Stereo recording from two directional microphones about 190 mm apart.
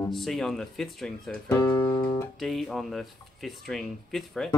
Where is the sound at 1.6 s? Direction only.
15° left (ahead or behind).